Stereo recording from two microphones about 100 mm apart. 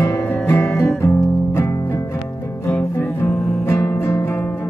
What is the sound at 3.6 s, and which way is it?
Music, 20° left (ahead or behind).